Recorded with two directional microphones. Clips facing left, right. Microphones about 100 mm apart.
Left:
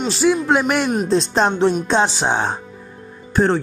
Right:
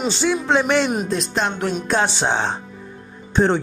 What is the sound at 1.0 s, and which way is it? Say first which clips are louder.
Speech: left 5 dB; 30° left (ahead or behind).